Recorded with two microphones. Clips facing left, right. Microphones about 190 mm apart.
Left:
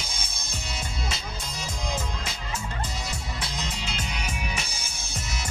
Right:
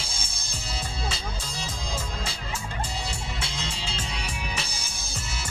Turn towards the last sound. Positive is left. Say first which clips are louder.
# even
turn(degrees=-30)  # may be behind; listen again after turning